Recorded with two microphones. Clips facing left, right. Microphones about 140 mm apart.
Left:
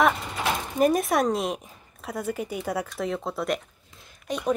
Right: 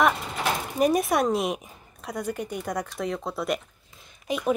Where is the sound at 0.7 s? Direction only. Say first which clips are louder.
Left 1 dB; centre (ahead or behind).